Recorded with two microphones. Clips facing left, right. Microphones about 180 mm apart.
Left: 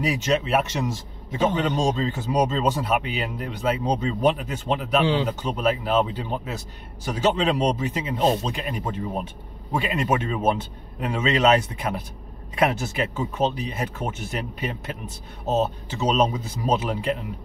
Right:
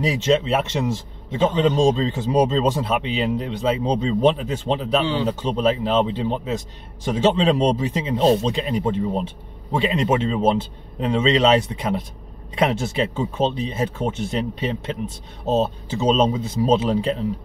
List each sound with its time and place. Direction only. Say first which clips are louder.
0.0 s speech: right 4 dB; 30° right (ahead or behind)